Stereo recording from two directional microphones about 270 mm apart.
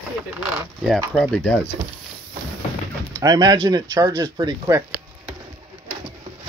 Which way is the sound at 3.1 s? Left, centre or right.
Centre.